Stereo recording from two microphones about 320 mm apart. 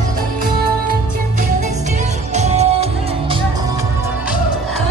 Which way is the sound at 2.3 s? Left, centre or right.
Right.